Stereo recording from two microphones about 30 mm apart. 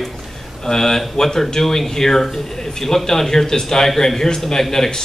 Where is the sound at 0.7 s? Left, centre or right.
Centre.